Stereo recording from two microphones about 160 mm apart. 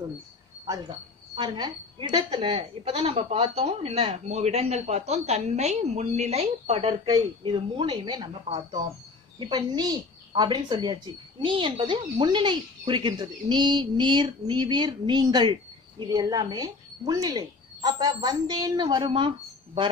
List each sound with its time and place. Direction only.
0.8 s a woman's voice: 30° right (ahead or behind)
9.4 s speech: 25° right (ahead or behind)